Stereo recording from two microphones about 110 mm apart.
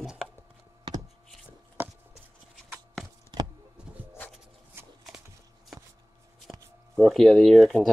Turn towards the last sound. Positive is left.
turn(degrees=0)  # may be behind; listen again after turning